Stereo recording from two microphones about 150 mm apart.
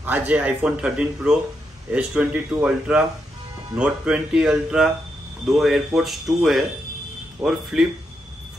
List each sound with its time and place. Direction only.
0.0 s speech: 10° right (ahead or behind)